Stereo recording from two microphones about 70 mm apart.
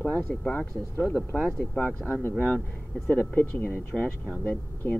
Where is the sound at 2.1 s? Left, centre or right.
Left.